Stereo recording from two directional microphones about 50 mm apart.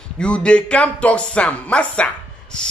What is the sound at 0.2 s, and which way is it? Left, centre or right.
Speech, centre.